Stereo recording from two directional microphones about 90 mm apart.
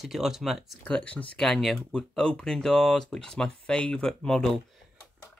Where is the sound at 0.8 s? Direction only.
15° left (ahead or behind).